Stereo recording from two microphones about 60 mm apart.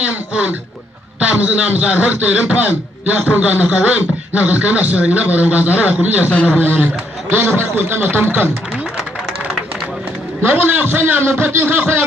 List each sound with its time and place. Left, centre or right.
0.0 s a man's voice: right
10.4 s a man's voice: right